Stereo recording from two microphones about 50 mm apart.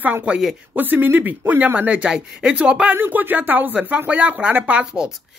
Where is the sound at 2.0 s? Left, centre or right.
Centre.